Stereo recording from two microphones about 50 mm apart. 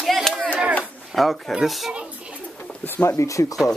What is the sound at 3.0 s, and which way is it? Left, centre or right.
Speech, left.